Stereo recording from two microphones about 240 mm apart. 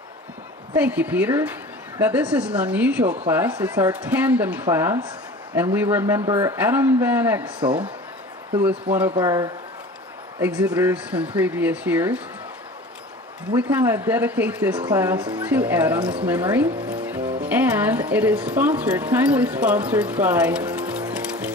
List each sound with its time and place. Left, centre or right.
0.7 s a woman's voice: centre
9.1 s a woman's voice: centre
13.6 s a woman's voice: centre